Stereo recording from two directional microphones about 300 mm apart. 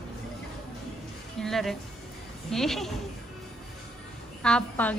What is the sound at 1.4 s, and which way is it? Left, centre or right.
Speech, centre.